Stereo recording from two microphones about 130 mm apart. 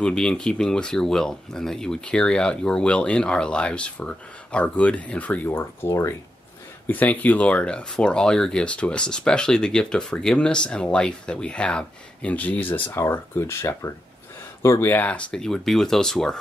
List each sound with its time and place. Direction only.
0.0 s speech: 5° left (ahead or behind)